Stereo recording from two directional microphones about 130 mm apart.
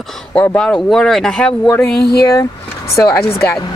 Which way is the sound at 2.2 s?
25° left (ahead or behind).